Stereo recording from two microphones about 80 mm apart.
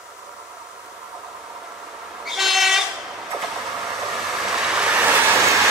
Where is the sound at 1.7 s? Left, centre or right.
Centre.